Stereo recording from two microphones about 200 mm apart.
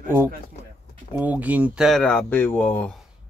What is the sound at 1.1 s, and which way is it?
Speech, 10° right (ahead or behind).